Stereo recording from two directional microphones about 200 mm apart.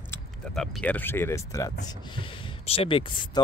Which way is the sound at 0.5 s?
Centre (ahead or behind).